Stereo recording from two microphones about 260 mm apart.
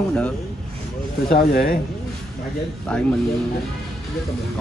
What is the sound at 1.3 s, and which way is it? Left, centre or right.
Speech, left.